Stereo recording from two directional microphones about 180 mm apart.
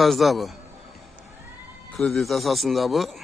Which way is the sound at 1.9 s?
Centre (ahead or behind).